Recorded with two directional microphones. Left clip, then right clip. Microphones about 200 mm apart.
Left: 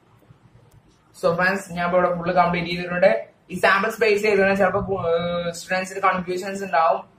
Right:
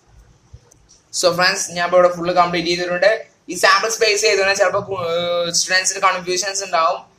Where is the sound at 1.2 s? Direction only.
60° right (ahead or behind).